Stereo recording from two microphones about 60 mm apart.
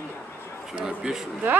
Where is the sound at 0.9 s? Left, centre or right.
Centre.